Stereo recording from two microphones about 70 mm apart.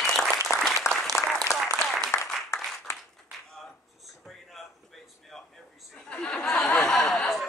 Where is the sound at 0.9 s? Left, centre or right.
Centre.